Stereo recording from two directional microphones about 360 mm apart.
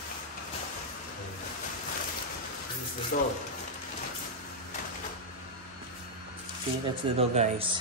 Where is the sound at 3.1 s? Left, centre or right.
Left.